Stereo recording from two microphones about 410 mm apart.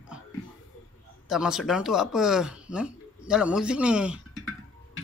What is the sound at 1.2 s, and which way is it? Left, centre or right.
Speech, centre.